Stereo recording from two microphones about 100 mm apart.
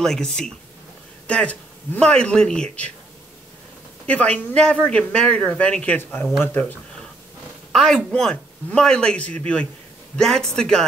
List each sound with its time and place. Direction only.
0.0 s a man's voice: 5° left (ahead or behind)
4.0 s a man's voice: 15° left (ahead or behind)
7.7 s a man's voice: 5° left (ahead or behind)